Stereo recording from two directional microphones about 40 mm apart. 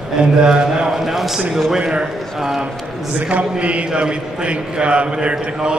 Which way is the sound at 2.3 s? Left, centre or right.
Centre.